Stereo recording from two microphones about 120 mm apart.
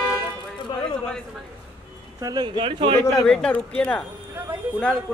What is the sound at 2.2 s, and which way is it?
Speech, 35° right (ahead or behind).